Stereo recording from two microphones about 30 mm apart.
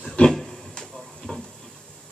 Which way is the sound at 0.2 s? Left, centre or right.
Left.